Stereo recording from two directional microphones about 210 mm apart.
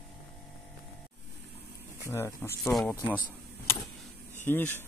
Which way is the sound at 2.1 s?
10° left (ahead or behind).